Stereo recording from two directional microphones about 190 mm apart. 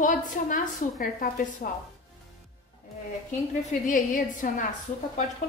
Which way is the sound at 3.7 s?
45° left (ahead or behind).